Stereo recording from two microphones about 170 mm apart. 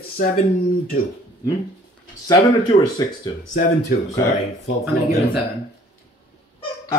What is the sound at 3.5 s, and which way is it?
Speech, 55° left (ahead or behind).